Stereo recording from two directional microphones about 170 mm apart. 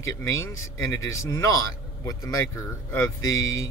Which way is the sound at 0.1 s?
20° left (ahead or behind).